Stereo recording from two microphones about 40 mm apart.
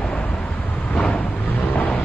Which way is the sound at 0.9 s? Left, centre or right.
Left.